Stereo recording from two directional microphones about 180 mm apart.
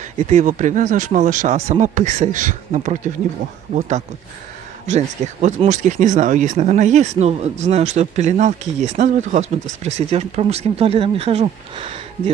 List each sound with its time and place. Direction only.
0.3 s speech: 40° right (ahead or behind)
4.8 s speech: 40° right (ahead or behind)